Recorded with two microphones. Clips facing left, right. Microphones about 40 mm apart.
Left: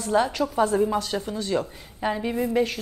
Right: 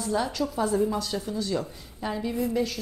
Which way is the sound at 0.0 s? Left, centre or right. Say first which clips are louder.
Left 5 dB; left.